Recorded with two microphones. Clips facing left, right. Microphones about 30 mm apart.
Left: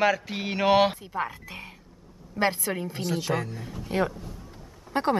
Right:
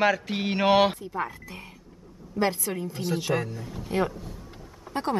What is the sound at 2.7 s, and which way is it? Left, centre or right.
Speech, left.